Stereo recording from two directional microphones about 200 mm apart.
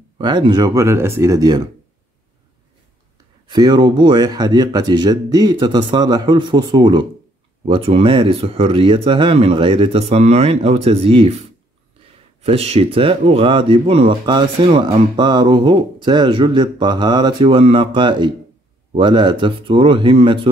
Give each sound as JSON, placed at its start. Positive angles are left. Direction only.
{"t": 0.2, "sound": "speech", "side_deg": -20}
{"t": 3.4, "sound": "speech", "side_deg": -20}
{"t": 12.4, "sound": "speech", "side_deg": -30}